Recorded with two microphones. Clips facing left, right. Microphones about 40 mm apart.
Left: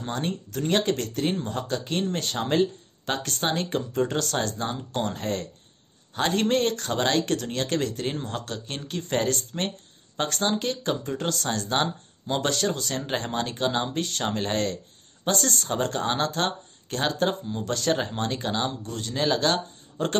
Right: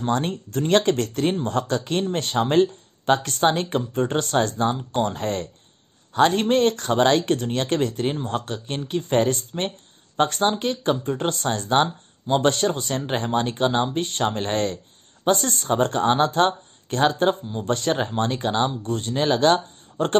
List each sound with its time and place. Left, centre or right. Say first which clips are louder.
0.0 s speech: right 6 dB; right
11.8 s speech: right 4 dB; right
12.4 s speech: right 5 dB; right
17.3 s speech: right 5 dB; centre
17.6 s speech: right 3 dB; right